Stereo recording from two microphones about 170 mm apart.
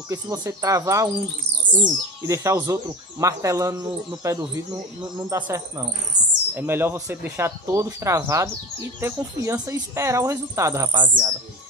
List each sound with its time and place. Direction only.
0.1 s speech: 20° right (ahead or behind)